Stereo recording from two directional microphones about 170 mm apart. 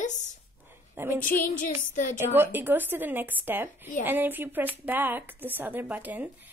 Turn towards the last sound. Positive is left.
turn(degrees=-10)  # may be behind; listen again after turning